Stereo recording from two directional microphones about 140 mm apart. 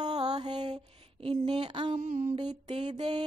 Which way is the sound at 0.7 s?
45° right (ahead or behind).